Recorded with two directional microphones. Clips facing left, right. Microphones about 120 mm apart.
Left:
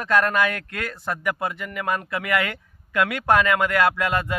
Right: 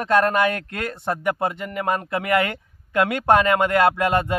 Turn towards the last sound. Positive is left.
turn(degrees=-30)  # may be behind; listen again after turning